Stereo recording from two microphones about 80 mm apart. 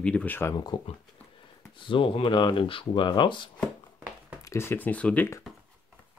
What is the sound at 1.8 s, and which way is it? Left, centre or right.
Speech, left.